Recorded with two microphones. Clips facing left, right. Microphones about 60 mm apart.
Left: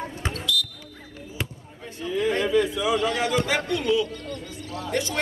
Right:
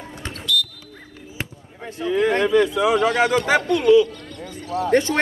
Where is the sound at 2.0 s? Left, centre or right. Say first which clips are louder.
Right 5 dB; right.